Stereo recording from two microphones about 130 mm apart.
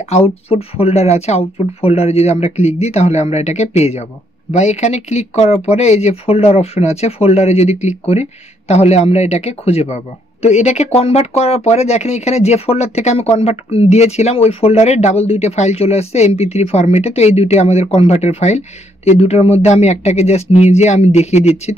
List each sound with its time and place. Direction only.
0.1 s speech: 50° left (ahead or behind)